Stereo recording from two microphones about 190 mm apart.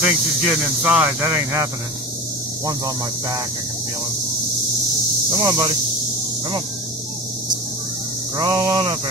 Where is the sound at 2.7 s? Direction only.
20° right (ahead or behind).